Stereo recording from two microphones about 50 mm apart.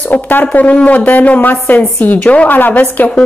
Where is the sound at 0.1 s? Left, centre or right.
Left.